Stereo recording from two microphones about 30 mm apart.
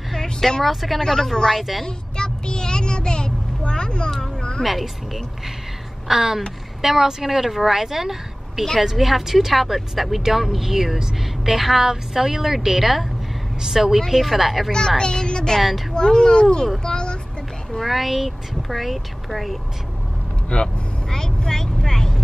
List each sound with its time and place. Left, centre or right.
0.1 s vehicle: centre
0.7 s speech: centre
0.9 s speech: centre
1.6 s speech: centre
1.9 s vehicle: left
4.2 s cat: left
4.6 s speech: centre
14.0 s speech: centre
14.7 s speech: left
16.8 s a sound: left
17.7 s speech: centre
20.6 s vehicle: centre
21.5 s speech: centre